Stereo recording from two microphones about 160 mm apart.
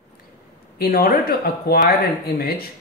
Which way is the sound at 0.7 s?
70° left (ahead or behind).